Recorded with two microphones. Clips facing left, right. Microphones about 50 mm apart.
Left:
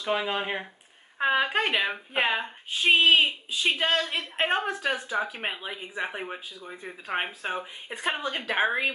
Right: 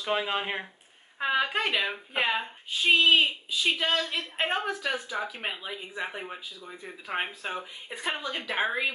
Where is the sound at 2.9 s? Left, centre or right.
Left.